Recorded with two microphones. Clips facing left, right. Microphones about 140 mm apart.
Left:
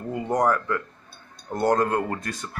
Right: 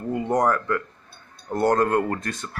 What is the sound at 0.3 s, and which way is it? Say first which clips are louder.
Speech: even; 5° left (ahead or behind).